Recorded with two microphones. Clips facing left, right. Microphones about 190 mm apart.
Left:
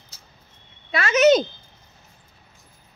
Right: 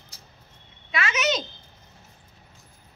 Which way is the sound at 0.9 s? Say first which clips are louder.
Left 10 dB; 40° left (ahead or behind).